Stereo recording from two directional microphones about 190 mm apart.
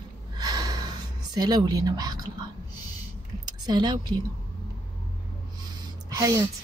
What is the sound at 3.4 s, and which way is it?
Speech, 20° right (ahead or behind).